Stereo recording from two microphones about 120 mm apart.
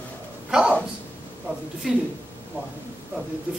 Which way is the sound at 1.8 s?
5° right (ahead or behind).